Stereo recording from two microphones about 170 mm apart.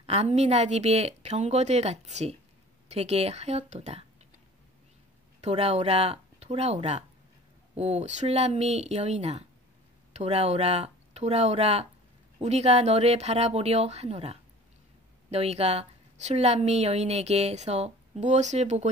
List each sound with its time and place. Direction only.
0.0 s a woman's voice: 40° right (ahead or behind)
5.4 s a woman's voice: 40° right (ahead or behind)